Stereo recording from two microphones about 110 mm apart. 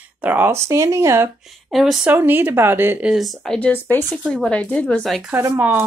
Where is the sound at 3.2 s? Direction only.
Centre (ahead or behind).